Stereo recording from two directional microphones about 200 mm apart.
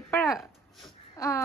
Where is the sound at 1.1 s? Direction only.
15° left (ahead or behind).